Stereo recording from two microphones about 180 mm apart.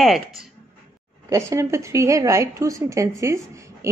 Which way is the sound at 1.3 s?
15° right (ahead or behind).